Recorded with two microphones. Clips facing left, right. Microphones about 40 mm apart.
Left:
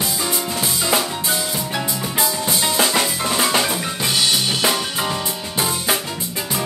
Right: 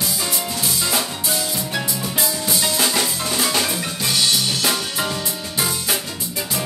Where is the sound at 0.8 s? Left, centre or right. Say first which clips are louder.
Left 5 dB; centre.